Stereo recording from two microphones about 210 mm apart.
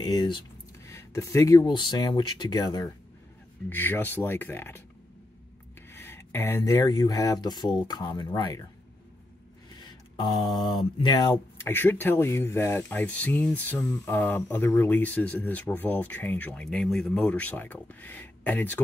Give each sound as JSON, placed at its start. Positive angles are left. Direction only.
{"t": 0.0, "sound": "speech", "side_deg": 20}
{"t": 5.9, "sound": "speech", "side_deg": 10}
{"t": 9.8, "sound": "mantra", "side_deg": 20}
{"t": 11.0, "sound": "speech", "side_deg": 20}